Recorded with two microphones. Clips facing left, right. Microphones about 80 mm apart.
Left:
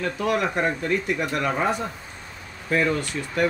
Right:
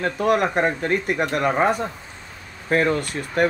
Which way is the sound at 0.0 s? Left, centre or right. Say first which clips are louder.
Right 4 dB; right.